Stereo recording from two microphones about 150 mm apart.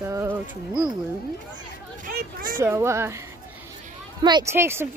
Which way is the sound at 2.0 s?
70° right (ahead or behind).